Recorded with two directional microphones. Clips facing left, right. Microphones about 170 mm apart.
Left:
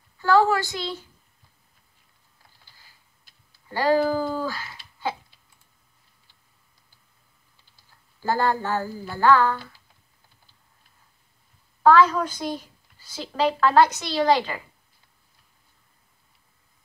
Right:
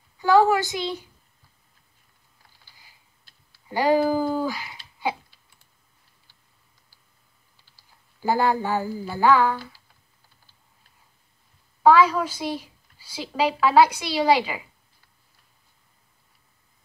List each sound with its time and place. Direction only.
0.2 s a woman's voice: 15° right (ahead or behind)
3.6 s speech: 15° right (ahead or behind)
8.2 s a woman's voice: 15° right (ahead or behind)
11.8 s a woman's voice: 10° right (ahead or behind)